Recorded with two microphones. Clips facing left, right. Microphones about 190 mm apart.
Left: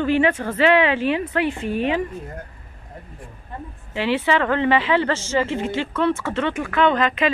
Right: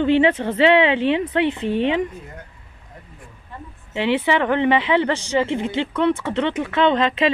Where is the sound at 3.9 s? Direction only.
20° right (ahead or behind).